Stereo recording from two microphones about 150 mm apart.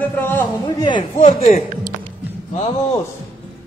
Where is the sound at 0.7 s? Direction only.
30° left (ahead or behind).